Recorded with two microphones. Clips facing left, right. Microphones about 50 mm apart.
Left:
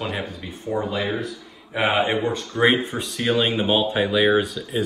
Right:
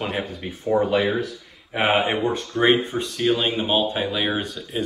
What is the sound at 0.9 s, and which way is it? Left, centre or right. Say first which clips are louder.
Speech: right 4 dB; right.